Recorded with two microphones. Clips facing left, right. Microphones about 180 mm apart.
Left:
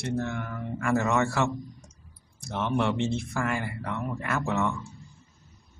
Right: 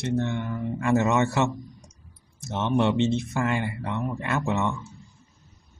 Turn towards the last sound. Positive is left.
turn(degrees=-20)  # may be behind; listen again after turning